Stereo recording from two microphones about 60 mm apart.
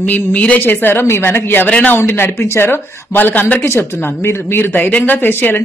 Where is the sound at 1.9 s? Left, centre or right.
Left.